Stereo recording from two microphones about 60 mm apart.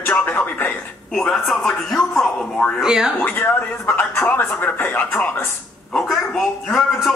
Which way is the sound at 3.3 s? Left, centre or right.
Left.